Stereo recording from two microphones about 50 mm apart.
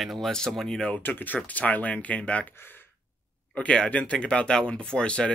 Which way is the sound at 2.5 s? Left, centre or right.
Left.